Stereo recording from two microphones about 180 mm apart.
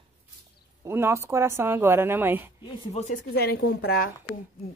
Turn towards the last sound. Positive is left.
turn(degrees=55)  # may be behind; listen again after turning